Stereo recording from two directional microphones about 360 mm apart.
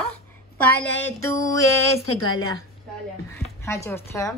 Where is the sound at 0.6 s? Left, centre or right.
Left.